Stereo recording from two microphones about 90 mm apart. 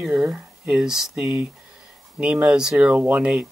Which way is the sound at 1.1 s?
15° right (ahead or behind).